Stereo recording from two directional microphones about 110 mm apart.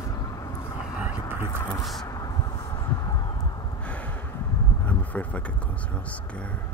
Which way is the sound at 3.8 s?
10° left (ahead or behind).